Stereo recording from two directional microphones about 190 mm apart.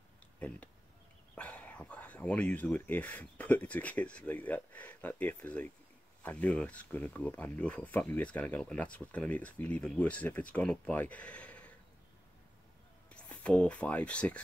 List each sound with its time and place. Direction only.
0.4 s speech: 5° left (ahead or behind)
13.1 s speech: 5° left (ahead or behind)